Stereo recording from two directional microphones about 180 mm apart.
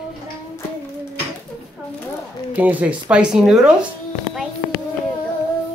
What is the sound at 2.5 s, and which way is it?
Speech, 10° right (ahead or behind).